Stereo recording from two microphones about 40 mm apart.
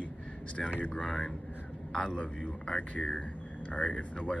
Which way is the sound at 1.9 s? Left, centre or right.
Left.